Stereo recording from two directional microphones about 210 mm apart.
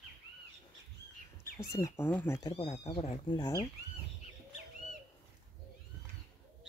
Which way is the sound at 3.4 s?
20° left (ahead or behind).